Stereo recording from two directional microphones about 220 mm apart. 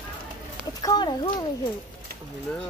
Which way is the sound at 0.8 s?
20° left (ahead or behind).